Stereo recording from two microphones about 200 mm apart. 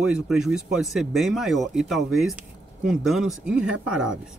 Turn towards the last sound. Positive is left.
turn(degrees=-5)  # may be behind; listen again after turning